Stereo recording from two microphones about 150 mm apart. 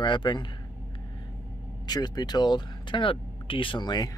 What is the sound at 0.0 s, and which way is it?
Speech, 30° left (ahead or behind).